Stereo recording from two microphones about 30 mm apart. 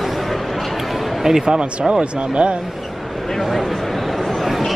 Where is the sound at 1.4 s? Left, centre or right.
Right.